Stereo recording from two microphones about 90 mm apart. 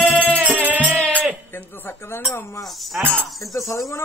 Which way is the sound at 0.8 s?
15° left (ahead or behind).